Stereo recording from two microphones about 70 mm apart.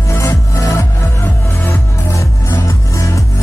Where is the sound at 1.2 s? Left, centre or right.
Left.